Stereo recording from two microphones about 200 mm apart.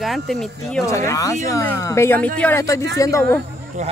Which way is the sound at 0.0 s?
Centre (ahead or behind).